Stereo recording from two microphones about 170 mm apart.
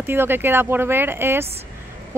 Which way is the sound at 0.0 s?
15° right (ahead or behind).